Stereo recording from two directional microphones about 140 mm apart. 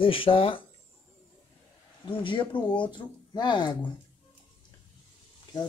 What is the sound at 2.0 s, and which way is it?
Speech, 35° left (ahead or behind).